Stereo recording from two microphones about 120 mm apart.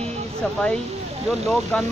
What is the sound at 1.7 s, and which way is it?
Speech, 10° left (ahead or behind).